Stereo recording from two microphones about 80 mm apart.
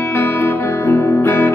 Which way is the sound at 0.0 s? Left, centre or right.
Left.